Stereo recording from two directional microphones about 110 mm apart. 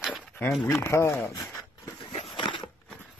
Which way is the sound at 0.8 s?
25° left (ahead or behind).